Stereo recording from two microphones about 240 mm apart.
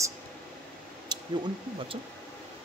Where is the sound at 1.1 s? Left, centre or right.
Centre.